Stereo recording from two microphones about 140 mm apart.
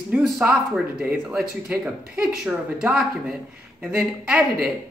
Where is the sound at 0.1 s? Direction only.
10° right (ahead or behind).